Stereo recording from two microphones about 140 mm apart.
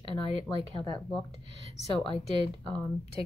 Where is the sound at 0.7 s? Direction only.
40° left (ahead or behind).